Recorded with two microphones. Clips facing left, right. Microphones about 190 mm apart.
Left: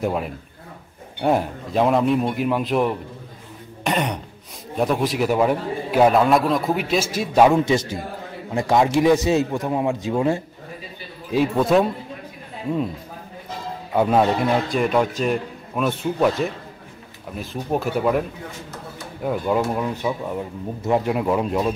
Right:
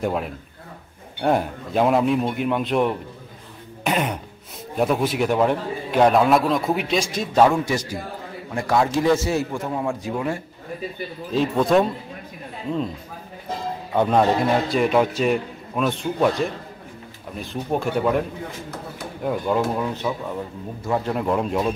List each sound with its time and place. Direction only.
0.0 s a man's voice: centre (ahead or behind); by 10.4 s 25° left (ahead or behind)
11.3 s a man's voice: 5° left (ahead or behind)
13.9 s a man's voice: 5° left (ahead or behind)
19.2 s a man's voice: 5° left (ahead or behind)
21.1 s a man's voice: 5° left (ahead or behind)